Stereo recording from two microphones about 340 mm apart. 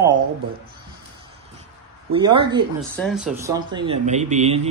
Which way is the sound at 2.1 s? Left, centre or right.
Centre.